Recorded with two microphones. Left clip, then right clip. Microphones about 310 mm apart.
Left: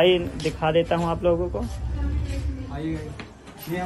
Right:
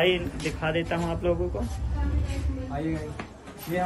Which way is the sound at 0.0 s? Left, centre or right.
Centre.